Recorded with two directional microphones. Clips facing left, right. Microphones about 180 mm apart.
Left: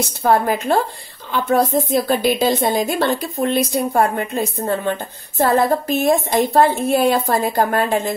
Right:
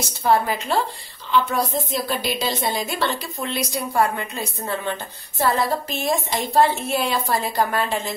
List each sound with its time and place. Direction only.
0.2 s a woman's voice: 50° left (ahead or behind)